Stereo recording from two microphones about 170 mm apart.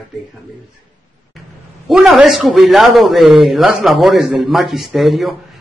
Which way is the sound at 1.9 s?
5° right (ahead or behind).